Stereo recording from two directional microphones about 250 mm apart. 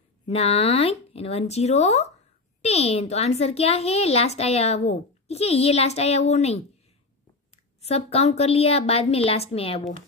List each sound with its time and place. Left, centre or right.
0.2 s speech: left